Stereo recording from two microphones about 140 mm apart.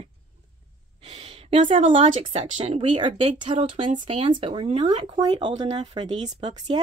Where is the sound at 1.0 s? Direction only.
40° right (ahead or behind).